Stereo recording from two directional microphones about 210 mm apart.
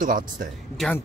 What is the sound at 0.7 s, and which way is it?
Speech, centre (ahead or behind).